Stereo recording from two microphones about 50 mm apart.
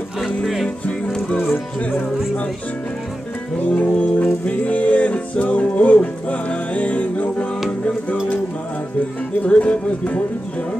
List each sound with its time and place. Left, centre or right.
3.6 s music: left
9.4 s speech: left